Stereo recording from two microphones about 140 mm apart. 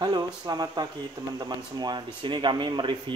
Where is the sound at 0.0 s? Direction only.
30° right (ahead or behind).